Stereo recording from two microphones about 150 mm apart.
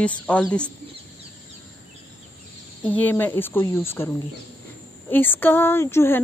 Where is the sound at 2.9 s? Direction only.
10° left (ahead or behind).